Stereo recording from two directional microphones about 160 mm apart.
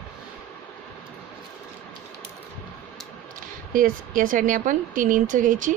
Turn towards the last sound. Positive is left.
turn(degrees=-55)  # may be behind; listen again after turning